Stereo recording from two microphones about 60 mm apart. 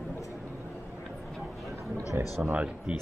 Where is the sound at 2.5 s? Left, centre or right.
Right.